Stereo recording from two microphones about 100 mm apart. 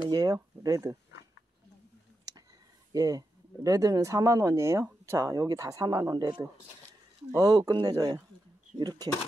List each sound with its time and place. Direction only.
0.1 s speech: 40° right (ahead or behind)
2.9 s speech: 40° right (ahead or behind)